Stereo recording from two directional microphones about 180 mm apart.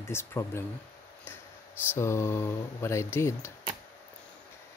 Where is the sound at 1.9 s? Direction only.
15° left (ahead or behind).